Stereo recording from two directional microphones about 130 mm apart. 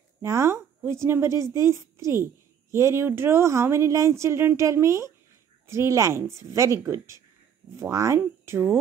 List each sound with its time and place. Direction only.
0.2 s a woman's voice: 20° right (ahead or behind)